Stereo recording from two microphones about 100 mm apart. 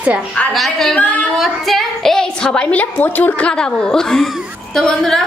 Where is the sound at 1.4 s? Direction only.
Centre (ahead or behind).